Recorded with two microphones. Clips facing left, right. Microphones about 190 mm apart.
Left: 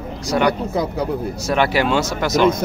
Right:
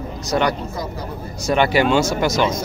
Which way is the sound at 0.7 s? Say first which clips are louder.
Left 7 dB; 60° left (ahead or behind).